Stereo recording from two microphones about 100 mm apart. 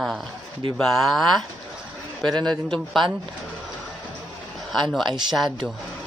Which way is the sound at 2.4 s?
5° left (ahead or behind).